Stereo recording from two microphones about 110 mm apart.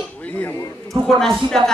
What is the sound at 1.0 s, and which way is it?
Speech, 5° left (ahead or behind).